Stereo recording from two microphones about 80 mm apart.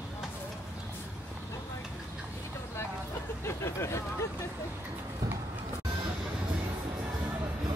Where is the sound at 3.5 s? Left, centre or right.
Left.